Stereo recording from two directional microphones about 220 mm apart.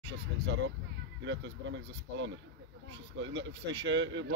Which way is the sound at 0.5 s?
60° right (ahead or behind).